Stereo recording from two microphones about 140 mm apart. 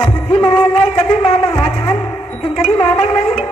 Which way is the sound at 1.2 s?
45° left (ahead or behind).